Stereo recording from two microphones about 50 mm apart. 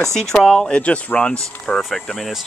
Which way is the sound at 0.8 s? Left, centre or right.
Left.